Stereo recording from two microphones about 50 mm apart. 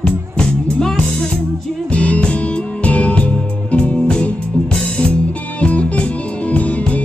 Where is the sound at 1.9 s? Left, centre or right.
Left.